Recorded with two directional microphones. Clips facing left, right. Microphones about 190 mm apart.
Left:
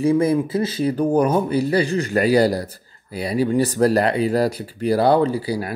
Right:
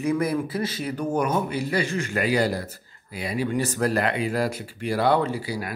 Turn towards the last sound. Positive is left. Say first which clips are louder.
# left 7 dB
turn(degrees=35)  # may be behind; listen again after turning